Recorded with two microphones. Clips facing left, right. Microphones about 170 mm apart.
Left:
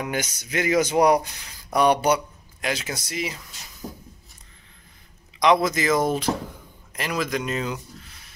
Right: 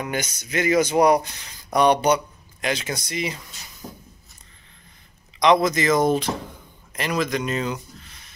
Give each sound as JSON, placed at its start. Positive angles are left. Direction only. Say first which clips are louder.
{"t": 0.0, "sound": "speech", "louder": "even", "side_deg": 10}
{"t": 3.8, "sound": "a sound", "louder": "left 2 dB", "side_deg": 0}
{"t": 5.4, "sound": "speech", "louder": "right 2 dB", "side_deg": 5}